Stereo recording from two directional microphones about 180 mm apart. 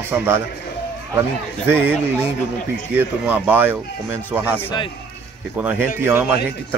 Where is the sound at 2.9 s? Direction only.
10° right (ahead or behind).